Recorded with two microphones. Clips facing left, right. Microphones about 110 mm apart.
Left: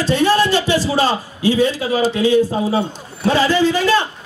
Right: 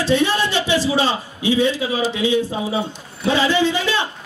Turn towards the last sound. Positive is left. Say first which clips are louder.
# left 4 dB
turn(degrees=40)  # may be behind; listen again after turning